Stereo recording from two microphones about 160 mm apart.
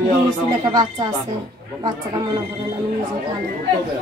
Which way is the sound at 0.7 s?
25° right (ahead or behind).